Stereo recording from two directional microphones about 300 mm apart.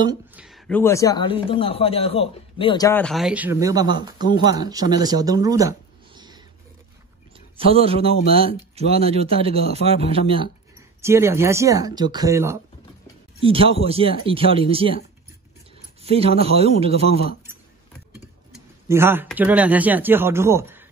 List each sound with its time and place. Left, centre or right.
0.0 s speech: centre
7.5 s a man's voice: centre
11.0 s speech: centre
16.0 s a man's voice: centre
18.9 s speech: centre